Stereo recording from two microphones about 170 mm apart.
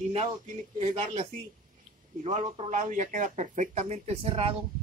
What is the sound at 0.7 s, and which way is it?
Speech, 35° right (ahead or behind).